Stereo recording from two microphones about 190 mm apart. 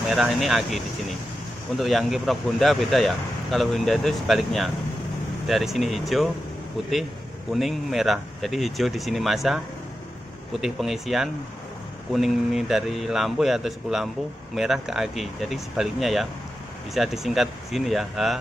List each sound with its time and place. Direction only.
0.1 s speech: centre (ahead or behind)
7.5 s speech: centre (ahead or behind)
10.6 s speech: centre (ahead or behind)